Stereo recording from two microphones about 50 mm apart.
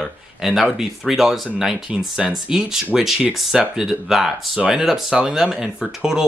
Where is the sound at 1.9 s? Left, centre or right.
Centre.